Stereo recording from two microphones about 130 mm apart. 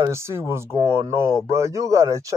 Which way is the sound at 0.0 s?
20° right (ahead or behind).